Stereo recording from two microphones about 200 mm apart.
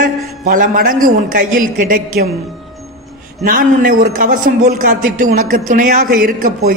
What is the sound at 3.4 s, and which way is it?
Speech, 45° right (ahead or behind).